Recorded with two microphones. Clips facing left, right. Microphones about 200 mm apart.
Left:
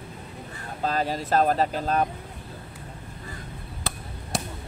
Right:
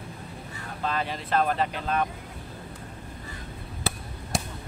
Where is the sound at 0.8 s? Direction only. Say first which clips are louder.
Left 4 dB; 40° left (ahead or behind).